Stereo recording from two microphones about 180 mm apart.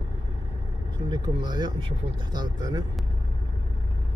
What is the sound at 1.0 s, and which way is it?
Speech, 25° right (ahead or behind).